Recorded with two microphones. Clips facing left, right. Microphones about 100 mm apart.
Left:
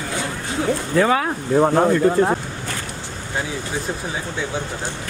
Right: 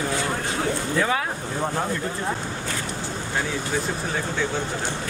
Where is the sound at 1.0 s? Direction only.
75° left (ahead or behind).